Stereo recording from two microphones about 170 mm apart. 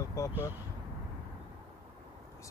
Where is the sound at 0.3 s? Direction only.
10° right (ahead or behind).